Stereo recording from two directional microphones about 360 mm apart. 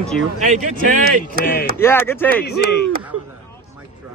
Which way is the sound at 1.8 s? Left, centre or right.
Centre.